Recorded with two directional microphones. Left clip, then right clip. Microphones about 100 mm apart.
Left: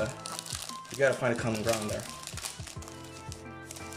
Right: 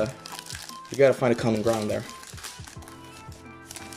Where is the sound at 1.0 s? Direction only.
50° right (ahead or behind).